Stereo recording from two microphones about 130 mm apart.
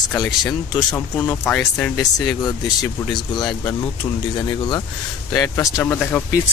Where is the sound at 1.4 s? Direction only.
10° left (ahead or behind).